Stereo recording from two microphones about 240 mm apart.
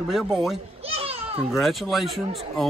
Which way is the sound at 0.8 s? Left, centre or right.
Right.